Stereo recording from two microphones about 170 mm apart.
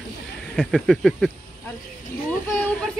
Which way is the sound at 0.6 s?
Centre (ahead or behind).